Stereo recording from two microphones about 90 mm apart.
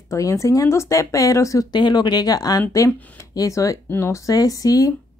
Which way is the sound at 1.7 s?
55° left (ahead or behind).